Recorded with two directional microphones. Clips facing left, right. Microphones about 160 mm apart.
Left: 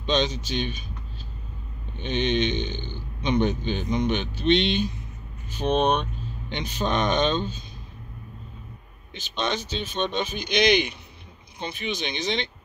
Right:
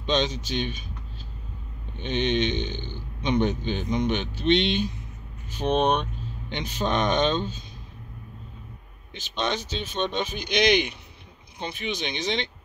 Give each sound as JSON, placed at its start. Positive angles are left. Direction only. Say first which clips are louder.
{"t": 0.0, "sound": "speech", "louder": "left 1 dB", "side_deg": -10}
{"t": 2.0, "sound": "speech", "louder": "even", "side_deg": -10}
{"t": 9.3, "sound": "speech", "louder": "even", "side_deg": -10}